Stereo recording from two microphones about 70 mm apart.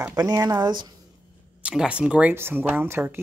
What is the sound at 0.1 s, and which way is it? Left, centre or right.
Speech, right.